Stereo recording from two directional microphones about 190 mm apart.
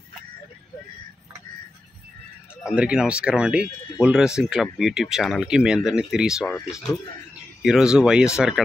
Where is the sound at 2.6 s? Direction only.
5° right (ahead or behind).